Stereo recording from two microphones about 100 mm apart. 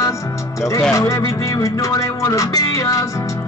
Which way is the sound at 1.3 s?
30° left (ahead or behind).